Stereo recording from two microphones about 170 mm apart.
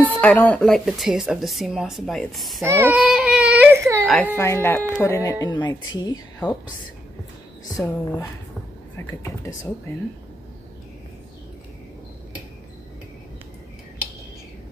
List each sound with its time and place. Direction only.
0.1 s speech: 10° left (ahead or behind)
2.6 s child singing: 15° right (ahead or behind)
3.0 s baby cry: 5° right (ahead or behind)
4.0 s speech: centre (ahead or behind)
4.4 s speech: 15° left (ahead or behind)
7.8 s speech: 20° left (ahead or behind)